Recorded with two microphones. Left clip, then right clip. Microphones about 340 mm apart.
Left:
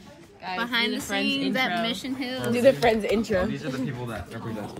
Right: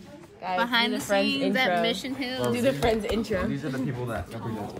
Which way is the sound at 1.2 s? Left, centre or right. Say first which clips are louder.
Right 1 dB; centre.